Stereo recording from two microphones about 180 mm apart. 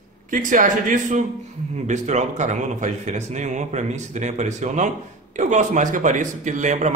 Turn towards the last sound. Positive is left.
turn(degrees=-40)  # may be behind; listen again after turning